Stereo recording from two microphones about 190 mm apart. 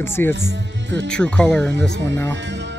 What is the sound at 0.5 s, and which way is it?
Speech, 65° right (ahead or behind).